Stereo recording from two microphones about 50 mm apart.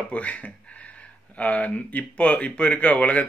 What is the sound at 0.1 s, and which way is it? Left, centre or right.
Speech, left.